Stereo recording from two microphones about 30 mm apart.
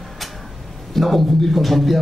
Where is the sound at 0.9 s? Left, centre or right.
Centre.